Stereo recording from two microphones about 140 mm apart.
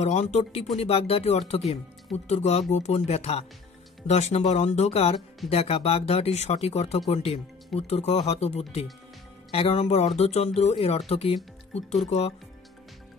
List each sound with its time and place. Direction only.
0.0 s speech: 50° left (ahead or behind)